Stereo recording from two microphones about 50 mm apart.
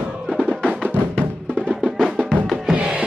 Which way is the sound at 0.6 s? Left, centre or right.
Centre.